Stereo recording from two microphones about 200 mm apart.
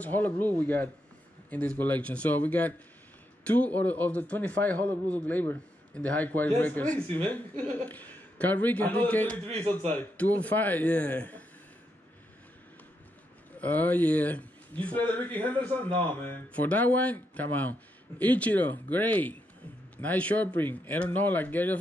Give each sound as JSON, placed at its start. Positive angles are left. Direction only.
{"t": 0.0, "sound": "speech", "side_deg": 10}
{"t": 7.9, "sound": "a man's voice", "side_deg": 10}
{"t": 9.5, "sound": "a man's voice", "side_deg": -30}
{"t": 9.9, "sound": "speech", "side_deg": 10}
{"t": 13.6, "sound": "speech", "side_deg": 10}